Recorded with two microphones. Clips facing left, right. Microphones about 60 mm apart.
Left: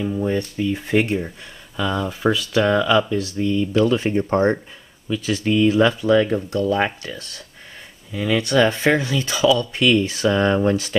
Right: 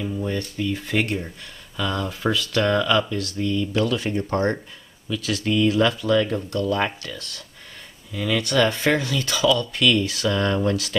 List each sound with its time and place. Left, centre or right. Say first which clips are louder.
0.0 s speech: left 5 dB; centre